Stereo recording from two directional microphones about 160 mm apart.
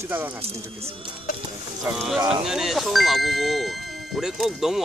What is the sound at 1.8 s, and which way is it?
Speech, 5° right (ahead or behind).